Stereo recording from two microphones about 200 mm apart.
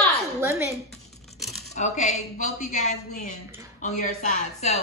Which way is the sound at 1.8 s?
35° left (ahead or behind).